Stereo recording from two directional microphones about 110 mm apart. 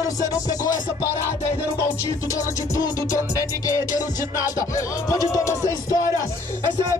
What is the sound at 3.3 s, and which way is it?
Music, 30° left (ahead or behind).